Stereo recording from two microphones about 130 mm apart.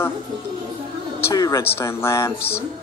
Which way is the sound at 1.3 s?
25° left (ahead or behind).